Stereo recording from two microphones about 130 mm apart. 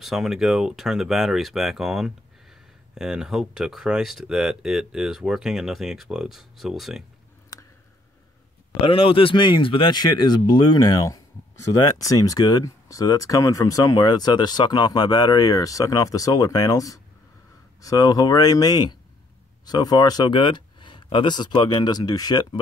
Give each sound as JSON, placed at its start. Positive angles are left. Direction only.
{"t": 0.0, "sound": "speech", "side_deg": -5}
{"t": 8.8, "sound": "speech", "side_deg": 45}